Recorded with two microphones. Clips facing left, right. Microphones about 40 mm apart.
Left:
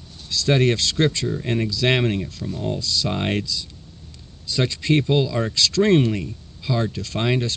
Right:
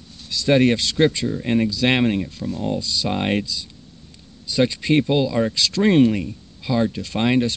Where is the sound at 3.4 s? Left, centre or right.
Centre.